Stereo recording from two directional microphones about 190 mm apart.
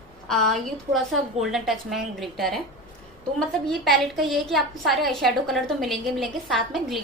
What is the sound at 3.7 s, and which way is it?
A woman's voice, centre (ahead or behind).